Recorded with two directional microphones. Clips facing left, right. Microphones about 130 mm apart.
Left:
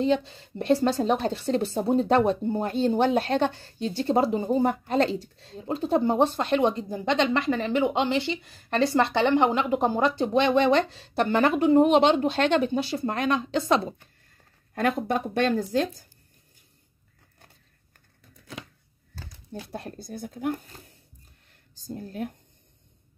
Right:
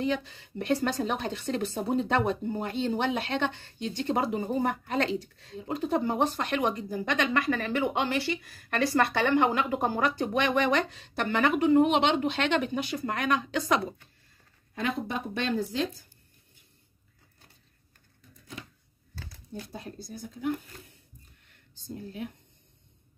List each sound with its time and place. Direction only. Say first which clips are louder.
0.0 s speech: left 6 dB; 30° left (ahead or behind)
14.7 s speech: left 6 dB; 55° left (ahead or behind)
19.7 s speech: left 4 dB; 65° left (ahead or behind)
21.7 s speech: left 4 dB; 45° left (ahead or behind)